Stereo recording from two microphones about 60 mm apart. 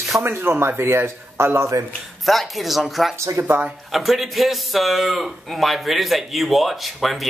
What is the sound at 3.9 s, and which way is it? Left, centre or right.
Speech, centre.